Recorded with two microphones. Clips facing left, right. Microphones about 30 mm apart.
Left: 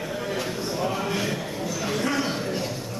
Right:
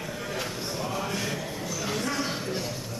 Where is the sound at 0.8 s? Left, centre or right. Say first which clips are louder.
Left 4 dB; centre.